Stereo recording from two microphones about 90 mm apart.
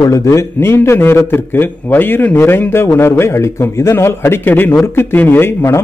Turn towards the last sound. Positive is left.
turn(degrees=30)  # may be behind; listen again after turning